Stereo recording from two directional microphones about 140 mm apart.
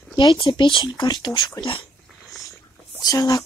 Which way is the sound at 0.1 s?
35° left (ahead or behind).